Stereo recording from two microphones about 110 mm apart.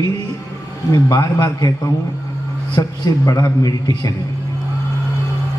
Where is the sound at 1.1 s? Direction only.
30° left (ahead or behind).